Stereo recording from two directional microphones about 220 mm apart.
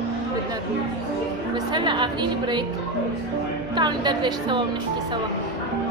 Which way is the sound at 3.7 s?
20° right (ahead or behind).